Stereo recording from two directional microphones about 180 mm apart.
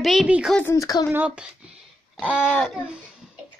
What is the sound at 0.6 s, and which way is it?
Speech, 15° left (ahead or behind).